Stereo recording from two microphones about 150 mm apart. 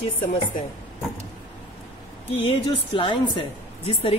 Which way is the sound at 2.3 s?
40° left (ahead or behind).